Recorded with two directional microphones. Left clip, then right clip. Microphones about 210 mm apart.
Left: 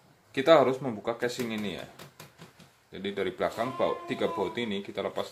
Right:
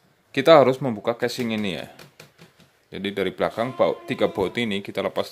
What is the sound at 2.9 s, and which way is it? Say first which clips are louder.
Speech: right 6 dB; 45° right (ahead or behind).